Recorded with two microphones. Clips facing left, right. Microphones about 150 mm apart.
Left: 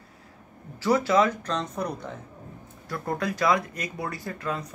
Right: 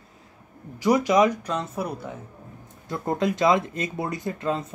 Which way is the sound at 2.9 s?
20° right (ahead or behind).